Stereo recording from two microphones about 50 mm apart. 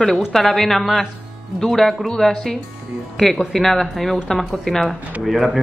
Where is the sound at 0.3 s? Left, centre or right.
Centre.